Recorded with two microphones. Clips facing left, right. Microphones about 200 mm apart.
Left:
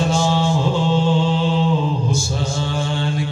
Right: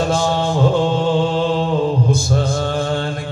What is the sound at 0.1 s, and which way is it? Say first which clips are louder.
Mantra: right 1 dB; 55° right (ahead or behind).